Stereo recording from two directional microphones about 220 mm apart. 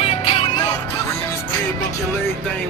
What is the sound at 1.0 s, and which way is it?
Music, 10° left (ahead or behind).